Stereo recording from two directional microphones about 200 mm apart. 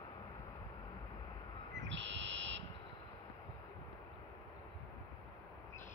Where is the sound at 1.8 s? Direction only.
65° right (ahead or behind).